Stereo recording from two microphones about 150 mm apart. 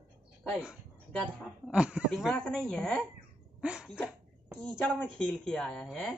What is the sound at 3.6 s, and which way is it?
Speech, 5° right (ahead or behind).